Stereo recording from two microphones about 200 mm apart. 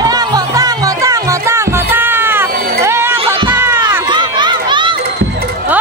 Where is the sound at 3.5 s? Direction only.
10° right (ahead or behind).